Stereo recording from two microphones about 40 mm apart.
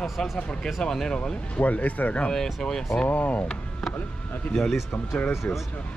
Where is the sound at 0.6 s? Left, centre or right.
Centre.